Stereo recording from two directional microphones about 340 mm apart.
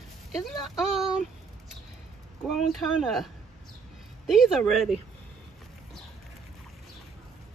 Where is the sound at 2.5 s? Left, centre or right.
Centre.